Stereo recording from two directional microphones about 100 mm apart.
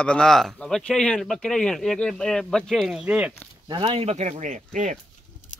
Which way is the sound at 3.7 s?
60° right (ahead or behind).